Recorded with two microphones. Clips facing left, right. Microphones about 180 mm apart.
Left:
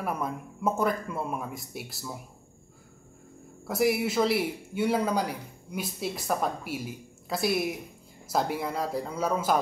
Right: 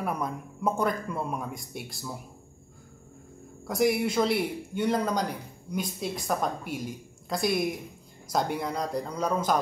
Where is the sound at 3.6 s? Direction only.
5° left (ahead or behind).